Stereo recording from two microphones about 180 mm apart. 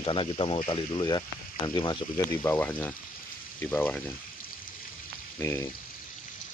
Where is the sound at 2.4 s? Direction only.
10° left (ahead or behind).